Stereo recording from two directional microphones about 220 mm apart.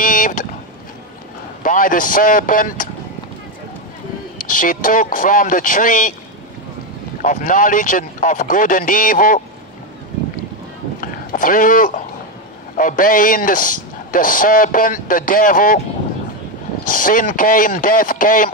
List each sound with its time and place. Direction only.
0.0 s boat: 40° left (ahead or behind)
1.6 s a man's voice: 40° left (ahead or behind)
4.4 s a man's voice: 40° left (ahead or behind)
7.2 s a man's voice: 40° left (ahead or behind)
11.0 s a sound: 40° left (ahead or behind)
12.7 s a man's voice: 40° left (ahead or behind)
16.8 s a man's voice: 40° left (ahead or behind)